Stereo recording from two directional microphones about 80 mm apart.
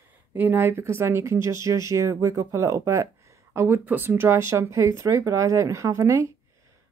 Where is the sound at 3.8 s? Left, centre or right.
Right.